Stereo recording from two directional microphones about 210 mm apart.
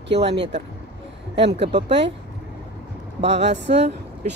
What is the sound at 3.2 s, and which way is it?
Speech, 55° right (ahead or behind).